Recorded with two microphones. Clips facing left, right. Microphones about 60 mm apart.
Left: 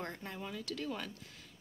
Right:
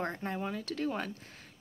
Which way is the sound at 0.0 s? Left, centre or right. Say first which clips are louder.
Right 7 dB; right.